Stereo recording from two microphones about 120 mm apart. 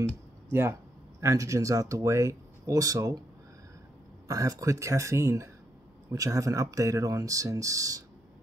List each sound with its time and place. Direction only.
0.5 s speech: 20° right (ahead or behind)
4.3 s speech: 30° right (ahead or behind)